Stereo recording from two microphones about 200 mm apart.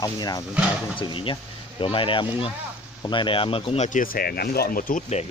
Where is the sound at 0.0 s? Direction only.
20° left (ahead or behind); by 5.2 s 45° left (ahead or behind).